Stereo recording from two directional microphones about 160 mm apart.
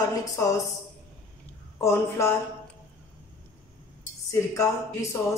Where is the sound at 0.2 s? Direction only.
20° left (ahead or behind).